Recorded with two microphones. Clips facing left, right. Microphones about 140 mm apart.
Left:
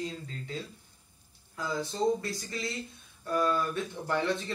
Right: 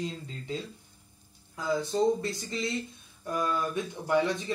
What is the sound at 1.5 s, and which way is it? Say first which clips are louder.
Speech: right 5 dB; 20° right (ahead or behind).